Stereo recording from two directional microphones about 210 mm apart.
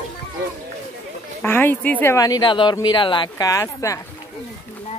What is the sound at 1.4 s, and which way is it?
Speech, 10° left (ahead or behind).